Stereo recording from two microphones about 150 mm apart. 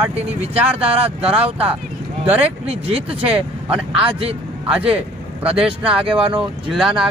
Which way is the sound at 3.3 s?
10° right (ahead or behind).